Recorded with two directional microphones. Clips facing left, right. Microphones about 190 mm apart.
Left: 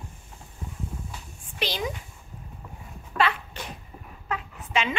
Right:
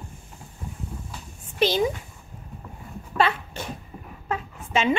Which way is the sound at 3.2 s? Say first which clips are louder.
Right 1 dB; 25° right (ahead or behind).